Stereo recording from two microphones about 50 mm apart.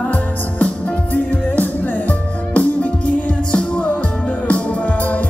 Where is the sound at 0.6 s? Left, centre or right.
Left.